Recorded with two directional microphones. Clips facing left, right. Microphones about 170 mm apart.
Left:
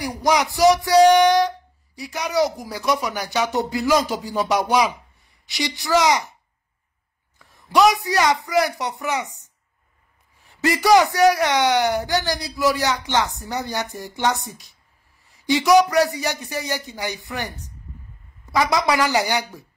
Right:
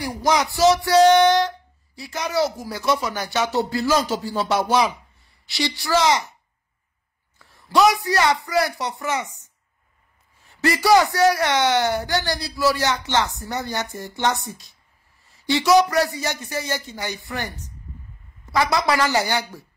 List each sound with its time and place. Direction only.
0.0 s speech: 15° left (ahead or behind)
7.3 s speech: 20° left (ahead or behind)